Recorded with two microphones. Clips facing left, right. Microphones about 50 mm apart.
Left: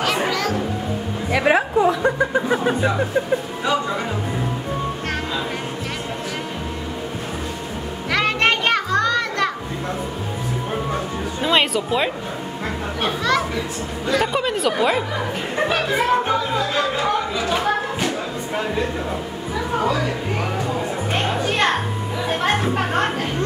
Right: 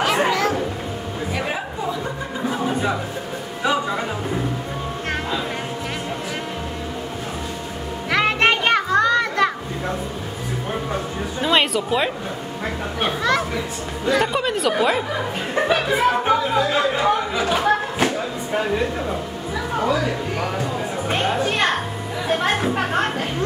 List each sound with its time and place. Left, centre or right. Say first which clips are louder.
0.3 s music: right 2 dB; centre
1.3 s music: left 12 dB; left
3.6 s speech: right 4 dB; centre
8.1 s music: right 1 dB; centre
11.4 s speech: even; centre
19.8 s speech: right 2 dB; centre
21.1 s music: right 2 dB; centre